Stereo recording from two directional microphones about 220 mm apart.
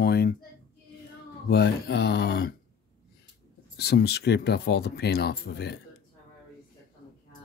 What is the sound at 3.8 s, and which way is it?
Speech, 50° left (ahead or behind).